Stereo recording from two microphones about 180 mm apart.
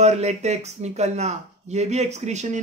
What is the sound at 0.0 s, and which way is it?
Speech, 40° right (ahead or behind).